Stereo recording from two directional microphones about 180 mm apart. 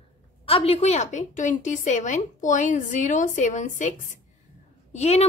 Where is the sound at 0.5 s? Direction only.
35° left (ahead or behind).